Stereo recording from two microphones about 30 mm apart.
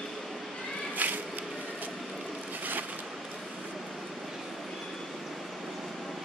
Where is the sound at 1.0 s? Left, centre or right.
Right.